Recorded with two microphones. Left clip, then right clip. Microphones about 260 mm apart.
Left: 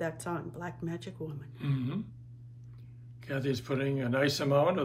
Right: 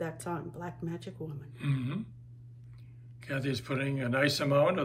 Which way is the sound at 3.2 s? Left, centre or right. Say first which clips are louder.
Left 1 dB; centre.